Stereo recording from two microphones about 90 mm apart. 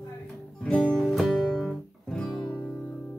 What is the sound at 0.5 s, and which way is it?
Music, 10° left (ahead or behind).